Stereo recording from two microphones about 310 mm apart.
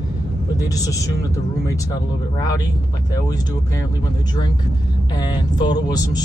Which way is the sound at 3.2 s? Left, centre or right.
Centre.